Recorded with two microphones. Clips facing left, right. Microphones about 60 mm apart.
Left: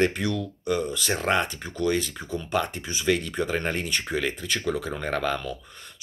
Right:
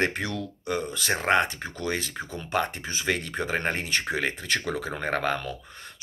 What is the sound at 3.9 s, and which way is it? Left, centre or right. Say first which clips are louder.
Speech: even; right.